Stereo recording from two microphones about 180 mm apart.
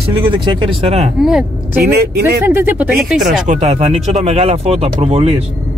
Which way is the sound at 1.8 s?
60° right (ahead or behind).